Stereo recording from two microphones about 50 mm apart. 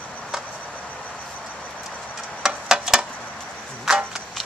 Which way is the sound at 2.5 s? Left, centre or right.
Centre.